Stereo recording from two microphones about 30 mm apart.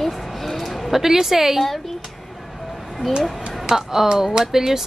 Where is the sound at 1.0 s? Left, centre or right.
Centre.